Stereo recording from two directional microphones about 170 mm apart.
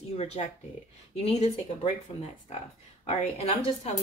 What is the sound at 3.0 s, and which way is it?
Speech, 40° left (ahead or behind).